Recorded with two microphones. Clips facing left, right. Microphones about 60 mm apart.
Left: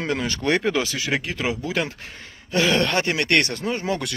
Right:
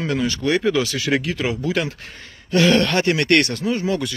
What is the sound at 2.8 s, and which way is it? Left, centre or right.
Speech, left.